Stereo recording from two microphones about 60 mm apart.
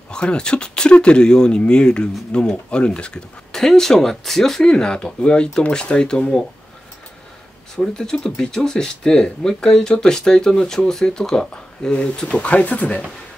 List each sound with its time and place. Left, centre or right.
0.1 s speech: centre
7.7 s speech: centre